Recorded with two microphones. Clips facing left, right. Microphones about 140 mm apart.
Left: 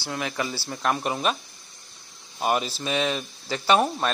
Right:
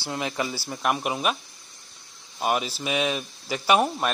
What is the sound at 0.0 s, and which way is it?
Speech, 20° right (ahead or behind).